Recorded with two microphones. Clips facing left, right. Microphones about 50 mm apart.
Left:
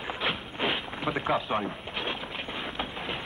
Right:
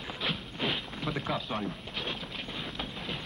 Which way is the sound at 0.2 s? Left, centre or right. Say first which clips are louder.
Left 3 dB; left.